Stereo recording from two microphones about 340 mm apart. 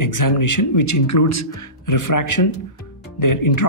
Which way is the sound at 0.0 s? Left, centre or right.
Left.